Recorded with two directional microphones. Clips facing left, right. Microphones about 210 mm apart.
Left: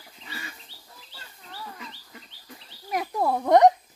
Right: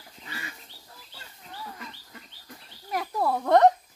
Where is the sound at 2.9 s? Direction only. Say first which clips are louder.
Left 2 dB; 15° left (ahead or behind).